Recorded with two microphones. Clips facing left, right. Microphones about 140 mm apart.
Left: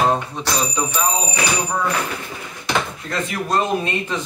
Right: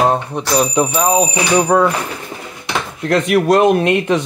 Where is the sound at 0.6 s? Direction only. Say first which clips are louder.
Right 9 dB; 65° right (ahead or behind).